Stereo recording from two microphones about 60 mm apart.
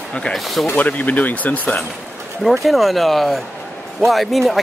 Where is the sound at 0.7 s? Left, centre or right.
Left.